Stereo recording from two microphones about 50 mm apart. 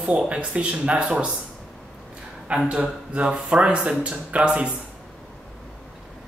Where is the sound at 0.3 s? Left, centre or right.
Right.